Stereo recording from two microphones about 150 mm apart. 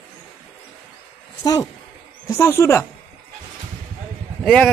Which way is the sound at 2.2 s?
15° left (ahead or behind).